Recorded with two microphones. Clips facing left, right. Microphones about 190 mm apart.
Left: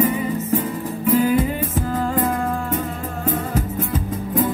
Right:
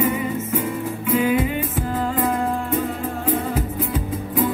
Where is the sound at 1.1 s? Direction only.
40° left (ahead or behind).